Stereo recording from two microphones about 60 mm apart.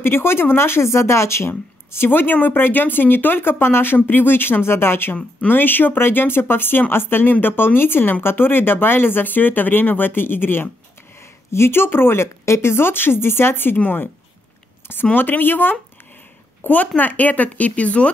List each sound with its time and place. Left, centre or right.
0.0 s speech: left
5.1 s speech: left
15.1 s speech: left